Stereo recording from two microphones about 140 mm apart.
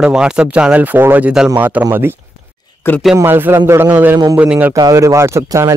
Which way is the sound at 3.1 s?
15° right (ahead or behind).